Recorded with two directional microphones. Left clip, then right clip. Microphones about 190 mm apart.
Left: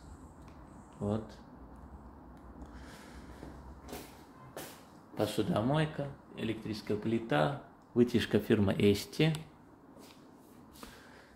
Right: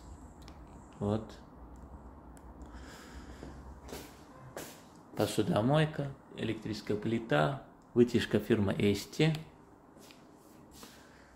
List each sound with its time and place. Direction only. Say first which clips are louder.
1.0 s speech: right 2 dB; 20° right (ahead or behind)
5.1 s speech: right 2 dB; 15° right (ahead or behind); by 9.3 s 10° left (ahead or behind)